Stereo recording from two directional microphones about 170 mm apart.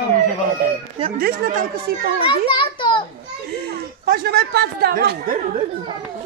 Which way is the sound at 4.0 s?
70° right (ahead or behind).